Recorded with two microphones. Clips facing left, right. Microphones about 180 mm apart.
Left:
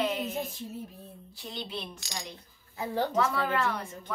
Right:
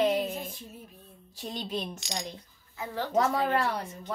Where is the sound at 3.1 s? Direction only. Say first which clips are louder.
Right 7 dB; 40° right (ahead or behind).